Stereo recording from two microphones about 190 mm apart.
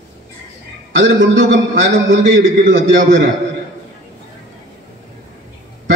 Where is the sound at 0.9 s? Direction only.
75° right (ahead or behind).